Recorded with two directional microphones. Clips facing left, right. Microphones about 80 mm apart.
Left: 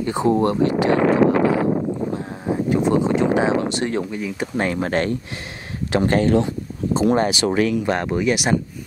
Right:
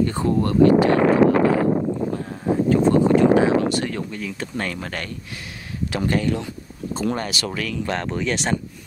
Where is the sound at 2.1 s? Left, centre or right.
Centre.